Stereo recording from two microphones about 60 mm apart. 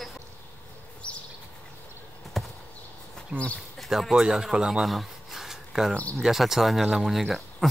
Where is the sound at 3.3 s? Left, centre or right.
Left.